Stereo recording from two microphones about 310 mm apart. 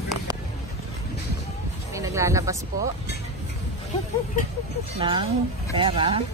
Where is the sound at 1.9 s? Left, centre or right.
Centre.